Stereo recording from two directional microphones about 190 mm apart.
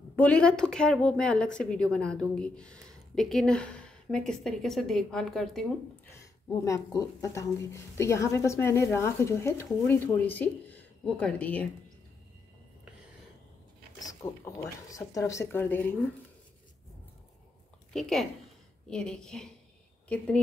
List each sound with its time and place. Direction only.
0.1 s a woman's voice: 5° left (ahead or behind)
6.0 s speech: 15° left (ahead or behind)
14.0 s speech: 15° left (ahead or behind)
17.9 s a woman's voice: centre (ahead or behind)